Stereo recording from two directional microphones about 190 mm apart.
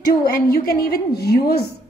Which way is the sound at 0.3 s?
50° left (ahead or behind).